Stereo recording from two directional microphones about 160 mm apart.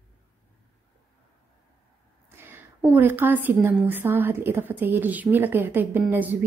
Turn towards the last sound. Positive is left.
turn(degrees=-10)  # may be behind; listen again after turning